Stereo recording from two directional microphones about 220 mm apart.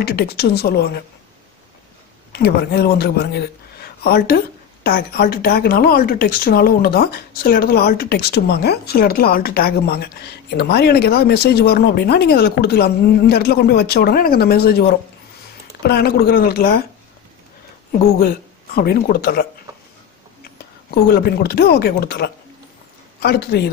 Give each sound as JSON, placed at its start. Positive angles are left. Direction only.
{"t": 0.0, "sound": "speech", "side_deg": 45}
{"t": 2.3, "sound": "a man's voice", "side_deg": 45}
{"t": 18.2, "sound": "speech", "side_deg": 45}
{"t": 20.4, "sound": "speech", "side_deg": 45}